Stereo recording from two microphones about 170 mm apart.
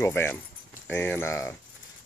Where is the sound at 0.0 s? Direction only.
15° left (ahead or behind).